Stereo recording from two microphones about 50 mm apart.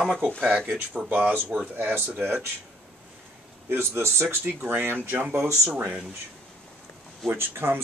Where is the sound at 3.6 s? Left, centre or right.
Right.